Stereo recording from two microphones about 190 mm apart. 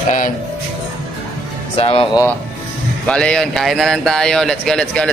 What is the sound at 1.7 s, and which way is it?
Speech, 30° left (ahead or behind).